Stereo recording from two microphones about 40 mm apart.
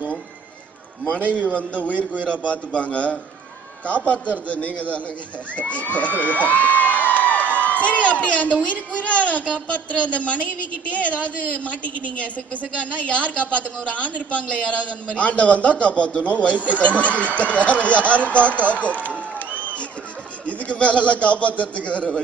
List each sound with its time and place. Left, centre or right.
1.3 s a woman's voice: left
6.2 s a sound: left
8.6 s a woman's voice: left
20.4 s a woman's voice: left